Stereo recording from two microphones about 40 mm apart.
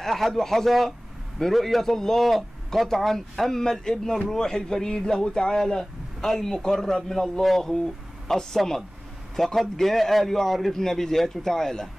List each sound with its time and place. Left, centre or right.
0.0 s a man's voice: centre